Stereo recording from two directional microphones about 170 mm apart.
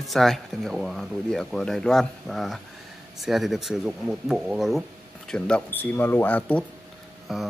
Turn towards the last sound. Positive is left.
turn(degrees=0)  # may be behind; listen again after turning